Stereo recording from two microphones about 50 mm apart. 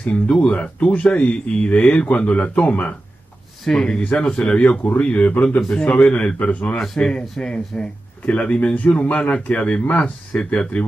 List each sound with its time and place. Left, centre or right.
0.0 s speech: left
3.6 s speech: centre; by 6.8 s left
7.0 s speech: centre
10.3 s speech: centre